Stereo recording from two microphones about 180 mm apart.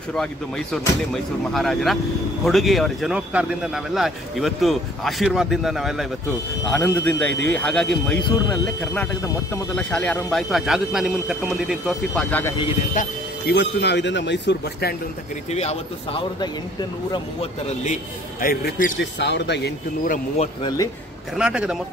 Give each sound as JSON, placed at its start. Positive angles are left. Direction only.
{"t": 1.1, "sound": "speech", "side_deg": 0}
{"t": 6.7, "sound": "speech", "side_deg": 10}
{"t": 12.2, "sound": "speech", "side_deg": 10}
{"t": 12.9, "sound": "speech", "side_deg": 45}
{"t": 13.6, "sound": "a man's voice", "side_deg": 70}
{"t": 15.5, "sound": "a man's voice", "side_deg": 35}
{"t": 18.4, "sound": "speech", "side_deg": 50}
{"t": 18.9, "sound": "a man's voice", "side_deg": 75}
{"t": 20.6, "sound": "speech", "side_deg": 20}
{"t": 21.4, "sound": "speech", "side_deg": -5}